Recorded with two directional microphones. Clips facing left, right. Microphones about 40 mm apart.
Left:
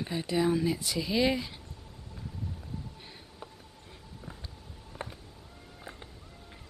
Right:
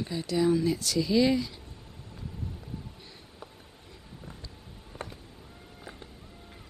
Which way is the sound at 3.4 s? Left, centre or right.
Centre.